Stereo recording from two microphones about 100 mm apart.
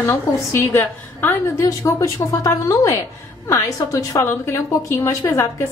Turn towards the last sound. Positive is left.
turn(degrees=30)  # may be behind; listen again after turning